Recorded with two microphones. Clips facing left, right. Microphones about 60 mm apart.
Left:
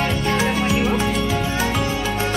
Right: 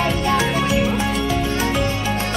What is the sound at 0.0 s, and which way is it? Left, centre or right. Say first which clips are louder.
Music: right 1 dB; centre.